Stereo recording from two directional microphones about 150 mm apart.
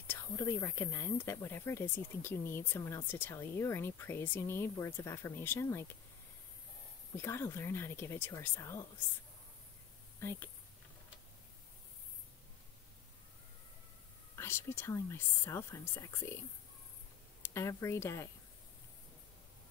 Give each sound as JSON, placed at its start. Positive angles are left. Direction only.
{"t": 0.0, "sound": "speech", "side_deg": 15}
{"t": 7.2, "sound": "speech", "side_deg": 15}
{"t": 14.3, "sound": "speech", "side_deg": 15}
{"t": 17.4, "sound": "speech", "side_deg": 20}